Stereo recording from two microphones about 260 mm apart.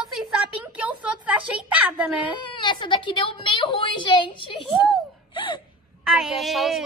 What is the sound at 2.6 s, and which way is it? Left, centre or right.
A woman's voice, centre.